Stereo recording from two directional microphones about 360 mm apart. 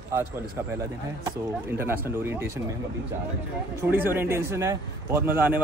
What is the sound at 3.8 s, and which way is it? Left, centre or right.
A man's voice, centre.